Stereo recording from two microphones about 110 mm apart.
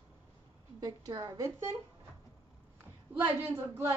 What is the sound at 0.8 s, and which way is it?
Speech, 35° right (ahead or behind).